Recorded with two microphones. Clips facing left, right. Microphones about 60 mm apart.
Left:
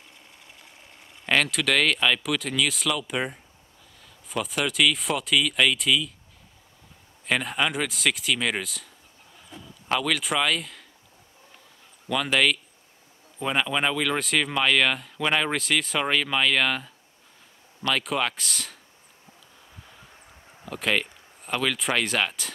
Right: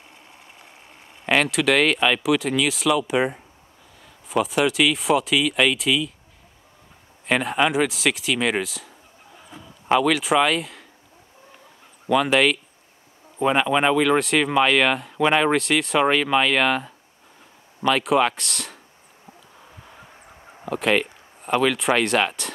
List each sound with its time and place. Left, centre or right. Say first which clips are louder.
1.2 s speech: right 4 dB; centre
7.2 s speech: right 5 dB; centre
9.5 s a sound: right 7 dB; centre
10.0 s speech: right 6 dB; centre
12.1 s speech: right 5 dB; centre
20.6 s speech: right 5 dB; centre